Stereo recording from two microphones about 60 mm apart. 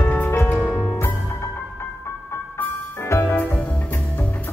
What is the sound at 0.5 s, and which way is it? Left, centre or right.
Music, left.